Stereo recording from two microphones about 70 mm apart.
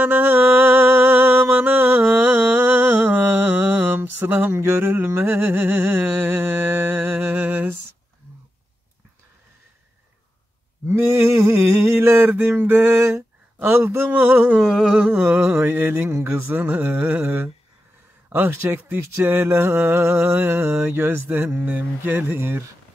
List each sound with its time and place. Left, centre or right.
0.0 s mantra: right
10.9 s a sound: right
14.6 s a sound: centre
15.0 s mantra: centre
15.6 s speech: right
16.7 s a sound: right
18.3 s speech: right
20.3 s mantra: right
20.8 s speech: right
21.6 s mantra: right
22.1 s speech: right